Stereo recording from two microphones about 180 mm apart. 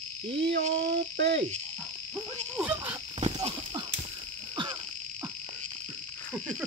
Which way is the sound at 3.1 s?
30° right (ahead or behind).